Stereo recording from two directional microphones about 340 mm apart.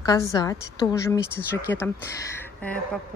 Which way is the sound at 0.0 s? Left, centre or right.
Centre.